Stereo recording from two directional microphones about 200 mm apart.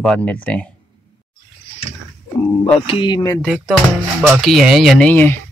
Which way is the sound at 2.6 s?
25° left (ahead or behind).